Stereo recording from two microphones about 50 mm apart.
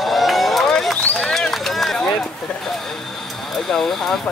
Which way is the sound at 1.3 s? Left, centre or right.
Centre.